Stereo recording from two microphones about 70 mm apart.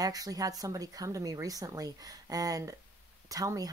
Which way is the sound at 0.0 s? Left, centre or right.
Right.